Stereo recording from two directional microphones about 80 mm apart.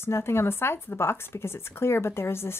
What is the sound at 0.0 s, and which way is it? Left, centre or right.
Speech, left.